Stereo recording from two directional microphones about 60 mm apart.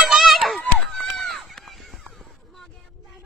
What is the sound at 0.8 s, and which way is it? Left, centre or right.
Run, centre.